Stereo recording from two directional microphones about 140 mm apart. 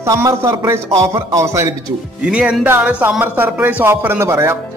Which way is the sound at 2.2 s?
10° right (ahead or behind).